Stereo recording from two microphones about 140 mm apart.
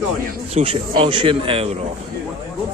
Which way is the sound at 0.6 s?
40° right (ahead or behind).